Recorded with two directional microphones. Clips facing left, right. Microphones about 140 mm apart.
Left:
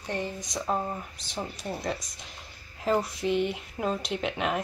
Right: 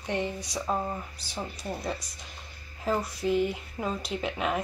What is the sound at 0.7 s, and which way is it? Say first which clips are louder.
Speech: left 1 dB; 5° left (ahead or behind).